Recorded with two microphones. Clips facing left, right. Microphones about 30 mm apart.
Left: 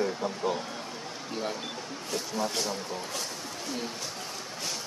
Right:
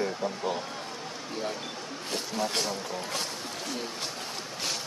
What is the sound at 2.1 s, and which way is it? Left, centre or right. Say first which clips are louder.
Speech: right 1 dB; right.